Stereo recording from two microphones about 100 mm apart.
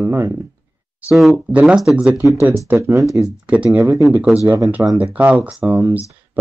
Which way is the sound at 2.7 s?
30° right (ahead or behind).